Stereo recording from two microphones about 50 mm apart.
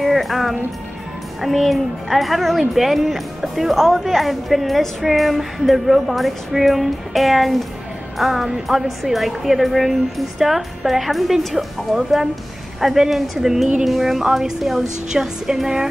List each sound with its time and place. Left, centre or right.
0.0 s music: centre
1.4 s speech: centre